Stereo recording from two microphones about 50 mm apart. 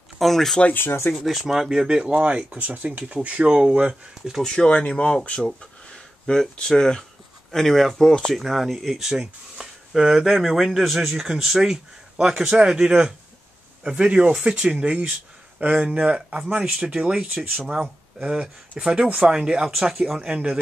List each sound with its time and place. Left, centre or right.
0.2 s speech: centre
0.7 s speech: left
1.1 s a man's voice: centre
2.1 s speech: right
4.6 s a man's voice: left; by 19.7 s centre
19.7 s speech: centre
20.2 s a man's voice: centre